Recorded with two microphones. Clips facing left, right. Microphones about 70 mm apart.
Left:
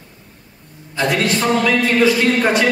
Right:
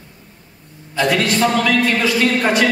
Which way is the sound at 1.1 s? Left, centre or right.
Left.